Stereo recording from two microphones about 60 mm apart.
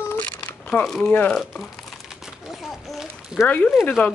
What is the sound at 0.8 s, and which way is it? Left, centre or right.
Speech, centre.